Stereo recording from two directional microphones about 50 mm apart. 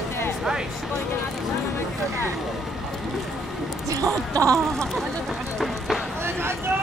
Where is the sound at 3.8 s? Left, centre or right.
Right.